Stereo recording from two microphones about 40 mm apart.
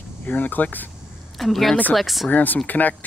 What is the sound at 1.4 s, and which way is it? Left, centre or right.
Speech, centre.